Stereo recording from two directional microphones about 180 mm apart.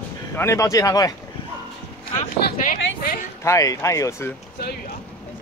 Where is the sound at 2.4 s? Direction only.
50° left (ahead or behind).